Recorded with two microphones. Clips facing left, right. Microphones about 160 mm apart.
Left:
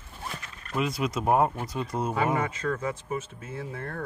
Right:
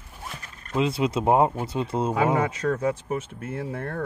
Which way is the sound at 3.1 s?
70° right (ahead or behind).